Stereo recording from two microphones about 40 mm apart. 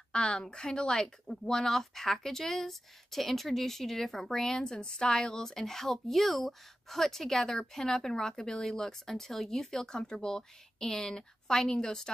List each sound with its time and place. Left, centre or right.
0.1 s a woman's voice: left